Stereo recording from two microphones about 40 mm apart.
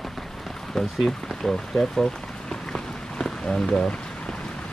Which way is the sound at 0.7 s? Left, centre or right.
Centre.